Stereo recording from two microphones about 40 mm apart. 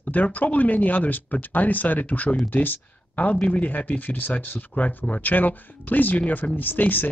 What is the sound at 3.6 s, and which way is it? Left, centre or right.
Speech, left.